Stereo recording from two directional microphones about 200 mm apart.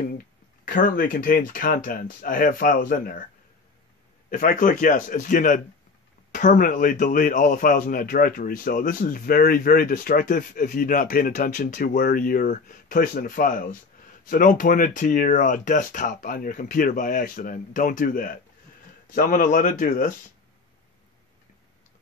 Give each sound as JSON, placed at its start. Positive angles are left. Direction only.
{"t": 0.7, "sound": "a man's voice", "side_deg": 45}
{"t": 4.3, "sound": "a man's voice", "side_deg": 40}